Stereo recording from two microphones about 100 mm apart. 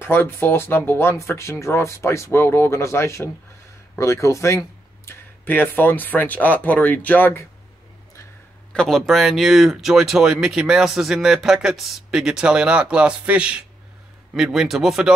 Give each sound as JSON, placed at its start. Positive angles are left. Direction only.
{"t": 0.0, "sound": "speech", "side_deg": 20}
{"t": 8.7, "sound": "speech", "side_deg": 5}